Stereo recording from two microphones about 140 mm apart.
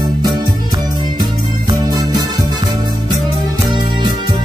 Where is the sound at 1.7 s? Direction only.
30° right (ahead or behind).